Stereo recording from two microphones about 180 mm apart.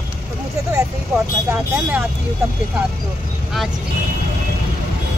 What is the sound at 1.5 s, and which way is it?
Speech, 10° right (ahead or behind).